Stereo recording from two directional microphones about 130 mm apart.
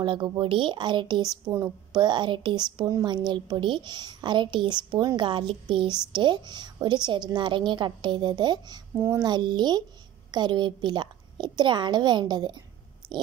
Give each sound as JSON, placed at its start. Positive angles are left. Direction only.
{"t": 0.0, "sound": "speech", "side_deg": -40}
{"t": 8.9, "sound": "speech", "side_deg": -20}
{"t": 9.2, "sound": "speech", "side_deg": -35}